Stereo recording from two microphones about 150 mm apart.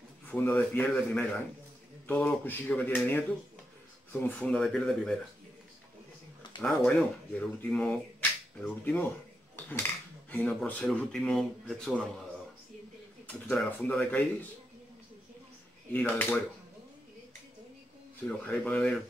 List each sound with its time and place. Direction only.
0.3 s speech: 10° left (ahead or behind)
6.6 s speech: 5° left (ahead or behind)
10.3 s speech: 10° left (ahead or behind)
13.3 s speech: 10° left (ahead or behind)
15.9 s speech: 10° left (ahead or behind)
18.4 s speech: 10° left (ahead or behind)